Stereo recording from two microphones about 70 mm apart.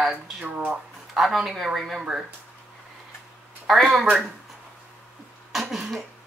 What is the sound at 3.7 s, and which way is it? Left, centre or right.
Speech, centre.